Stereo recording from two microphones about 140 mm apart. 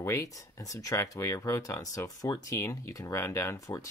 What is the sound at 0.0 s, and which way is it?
Speech, 20° left (ahead or behind).